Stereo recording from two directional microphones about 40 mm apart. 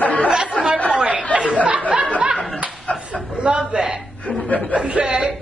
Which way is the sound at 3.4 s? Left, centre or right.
Right.